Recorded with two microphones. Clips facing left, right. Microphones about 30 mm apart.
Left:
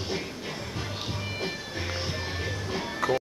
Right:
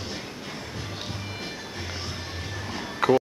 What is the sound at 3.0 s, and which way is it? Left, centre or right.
Music, right.